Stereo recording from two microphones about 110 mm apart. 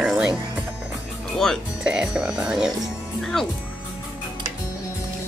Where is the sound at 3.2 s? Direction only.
5° left (ahead or behind).